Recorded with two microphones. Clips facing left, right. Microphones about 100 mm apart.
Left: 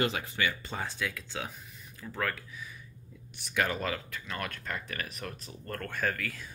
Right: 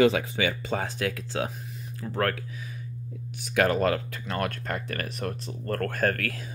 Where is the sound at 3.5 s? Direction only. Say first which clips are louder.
Right 8 dB; 55° right (ahead or behind).